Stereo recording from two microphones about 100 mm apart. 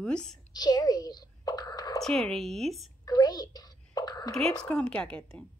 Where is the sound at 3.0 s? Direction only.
40° left (ahead or behind).